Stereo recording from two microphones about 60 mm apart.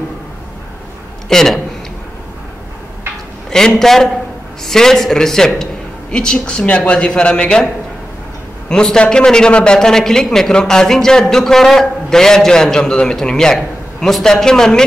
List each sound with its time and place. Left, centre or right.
1.3 s speech: centre
3.4 s a sound: centre
3.8 s a man's voice: centre
8.6 s a man's voice: centre